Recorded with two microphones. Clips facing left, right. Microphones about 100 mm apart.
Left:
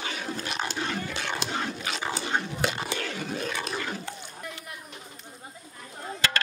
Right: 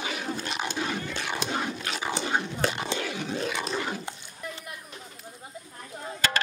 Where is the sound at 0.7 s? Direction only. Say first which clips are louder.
Right 1 dB; 15° right (ahead or behind).